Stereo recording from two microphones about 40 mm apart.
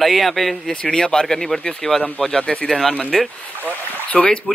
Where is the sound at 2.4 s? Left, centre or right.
Left.